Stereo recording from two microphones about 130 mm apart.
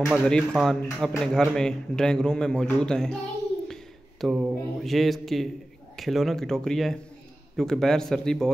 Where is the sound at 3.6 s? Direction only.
Centre (ahead or behind).